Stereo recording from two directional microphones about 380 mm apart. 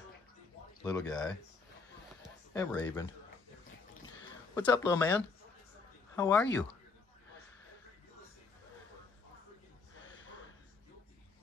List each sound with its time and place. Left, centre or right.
0.8 s speech: centre
2.5 s speech: centre
4.6 s speech: centre
6.1 s speech: centre
10.1 s snort: left